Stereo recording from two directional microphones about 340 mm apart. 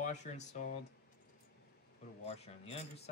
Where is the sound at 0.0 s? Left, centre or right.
Centre.